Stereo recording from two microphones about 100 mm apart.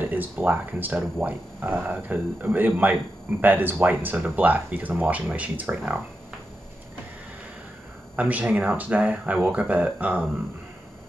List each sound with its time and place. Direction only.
0.0 s speech: 15° right (ahead or behind)
8.2 s speech: 15° right (ahead or behind)